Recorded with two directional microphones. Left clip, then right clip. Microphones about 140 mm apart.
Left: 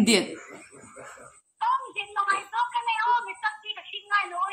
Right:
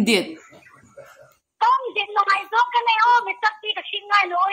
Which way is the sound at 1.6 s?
40° right (ahead or behind).